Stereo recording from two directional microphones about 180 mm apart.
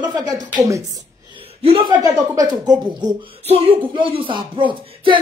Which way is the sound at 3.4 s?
35° right (ahead or behind).